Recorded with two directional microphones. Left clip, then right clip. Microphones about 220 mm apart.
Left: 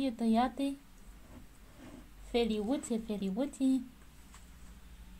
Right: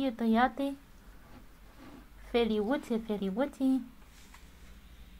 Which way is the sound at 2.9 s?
30° right (ahead or behind).